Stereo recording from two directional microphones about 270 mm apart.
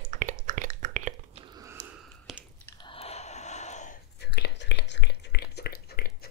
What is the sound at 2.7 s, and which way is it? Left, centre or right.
Whispering, centre.